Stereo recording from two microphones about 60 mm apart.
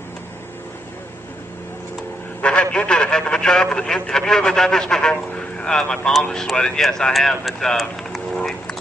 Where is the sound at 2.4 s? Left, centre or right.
Centre.